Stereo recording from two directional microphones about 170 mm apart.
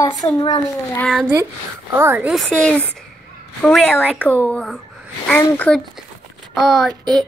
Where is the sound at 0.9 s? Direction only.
5° left (ahead or behind).